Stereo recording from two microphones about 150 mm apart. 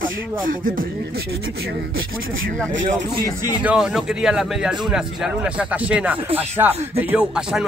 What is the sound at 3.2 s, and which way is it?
Speech, 25° left (ahead or behind).